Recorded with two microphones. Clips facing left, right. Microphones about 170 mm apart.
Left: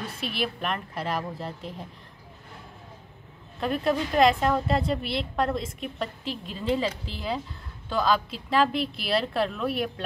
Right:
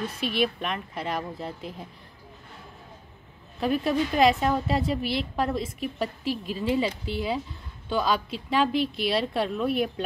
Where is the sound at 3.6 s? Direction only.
5° right (ahead or behind).